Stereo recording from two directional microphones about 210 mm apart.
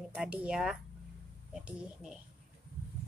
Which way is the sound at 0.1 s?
5° right (ahead or behind).